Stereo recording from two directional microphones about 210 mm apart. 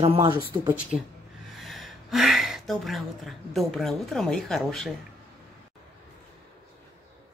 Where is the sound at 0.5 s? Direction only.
10° right (ahead or behind).